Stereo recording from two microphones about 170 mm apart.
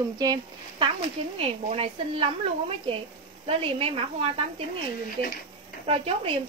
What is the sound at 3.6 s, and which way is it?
Speech, 35° right (ahead or behind).